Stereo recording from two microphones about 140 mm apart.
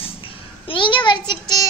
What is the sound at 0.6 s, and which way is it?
A child's voice, 35° left (ahead or behind).